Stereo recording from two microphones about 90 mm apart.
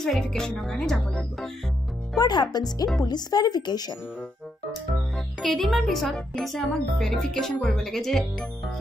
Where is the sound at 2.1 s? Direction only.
50° left (ahead or behind).